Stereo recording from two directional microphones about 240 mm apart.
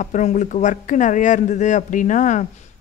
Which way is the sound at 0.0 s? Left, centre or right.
Left.